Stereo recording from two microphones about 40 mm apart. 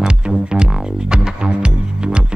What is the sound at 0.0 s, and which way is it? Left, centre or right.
Music, centre.